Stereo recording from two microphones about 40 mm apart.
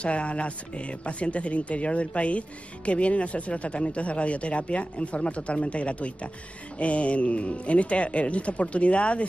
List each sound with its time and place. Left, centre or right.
0.0 s speech: left